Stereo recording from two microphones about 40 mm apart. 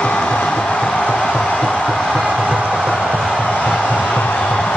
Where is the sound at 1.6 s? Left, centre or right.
Centre.